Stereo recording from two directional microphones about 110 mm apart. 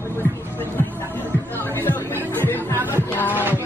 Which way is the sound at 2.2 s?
20° left (ahead or behind).